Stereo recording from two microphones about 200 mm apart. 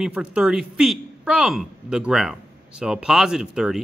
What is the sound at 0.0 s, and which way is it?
Speech, 5° right (ahead or behind).